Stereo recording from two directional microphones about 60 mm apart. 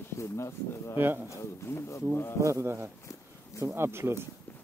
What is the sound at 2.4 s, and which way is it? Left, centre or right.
Speech, right.